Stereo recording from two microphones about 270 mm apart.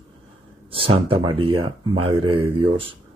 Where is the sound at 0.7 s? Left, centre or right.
Centre.